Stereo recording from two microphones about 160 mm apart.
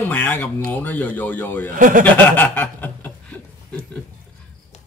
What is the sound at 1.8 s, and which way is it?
Speech, 55° right (ahead or behind).